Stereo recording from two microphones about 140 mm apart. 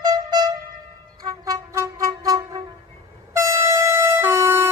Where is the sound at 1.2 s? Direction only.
25° right (ahead or behind).